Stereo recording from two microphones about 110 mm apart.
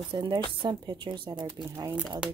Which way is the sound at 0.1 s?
45° right (ahead or behind).